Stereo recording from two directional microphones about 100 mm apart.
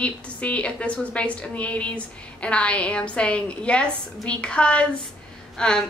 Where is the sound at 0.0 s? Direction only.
10° left (ahead or behind).